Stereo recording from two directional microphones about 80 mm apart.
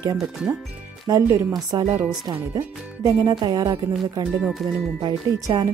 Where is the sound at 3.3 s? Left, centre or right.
Right.